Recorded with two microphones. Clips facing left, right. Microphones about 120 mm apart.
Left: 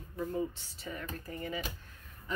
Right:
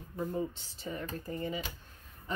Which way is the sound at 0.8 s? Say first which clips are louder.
Right 3 dB; 25° right (ahead or behind).